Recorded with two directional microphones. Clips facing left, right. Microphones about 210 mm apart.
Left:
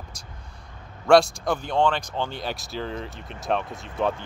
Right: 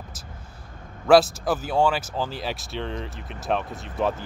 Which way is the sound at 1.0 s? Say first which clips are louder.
Right 1 dB; 5° right (ahead or behind).